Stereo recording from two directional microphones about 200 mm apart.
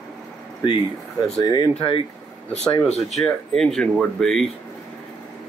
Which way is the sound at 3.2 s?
Centre (ahead or behind).